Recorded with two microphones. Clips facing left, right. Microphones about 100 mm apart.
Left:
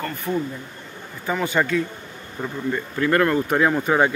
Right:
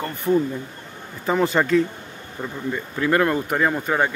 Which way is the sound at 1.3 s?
35° right (ahead or behind).